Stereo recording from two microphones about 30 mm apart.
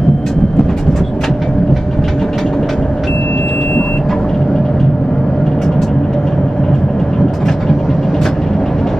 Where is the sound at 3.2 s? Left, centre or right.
Left.